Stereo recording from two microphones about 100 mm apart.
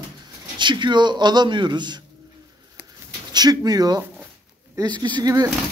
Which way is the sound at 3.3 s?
40° right (ahead or behind).